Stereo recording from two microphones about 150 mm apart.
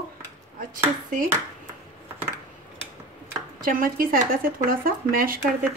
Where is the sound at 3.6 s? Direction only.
70° right (ahead or behind).